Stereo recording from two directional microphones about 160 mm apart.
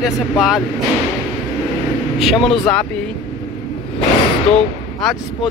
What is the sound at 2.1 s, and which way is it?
Speech, centre (ahead or behind).